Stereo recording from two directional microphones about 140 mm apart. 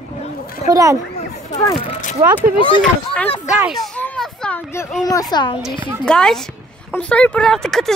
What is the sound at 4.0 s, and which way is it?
Children playing, 10° left (ahead or behind).